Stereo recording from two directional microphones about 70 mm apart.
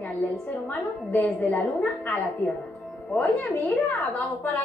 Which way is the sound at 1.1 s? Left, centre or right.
Centre.